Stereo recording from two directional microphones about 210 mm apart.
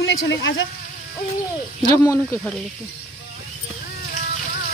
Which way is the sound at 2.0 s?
15° left (ahead or behind).